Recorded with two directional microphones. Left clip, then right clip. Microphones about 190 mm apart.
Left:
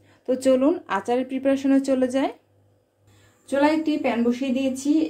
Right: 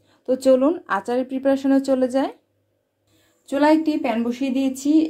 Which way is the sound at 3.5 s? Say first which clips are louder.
Right 3 dB; 40° right (ahead or behind).